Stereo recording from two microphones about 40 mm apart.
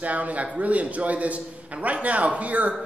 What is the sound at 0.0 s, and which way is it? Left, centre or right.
A man's voice, right.